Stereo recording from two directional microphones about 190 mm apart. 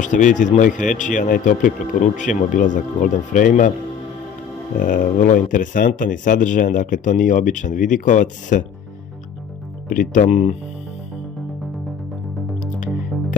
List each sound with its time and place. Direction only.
0.0 s speech: 40° left (ahead or behind)
4.7 s speech: 45° left (ahead or behind)
9.8 s speech: 45° left (ahead or behind)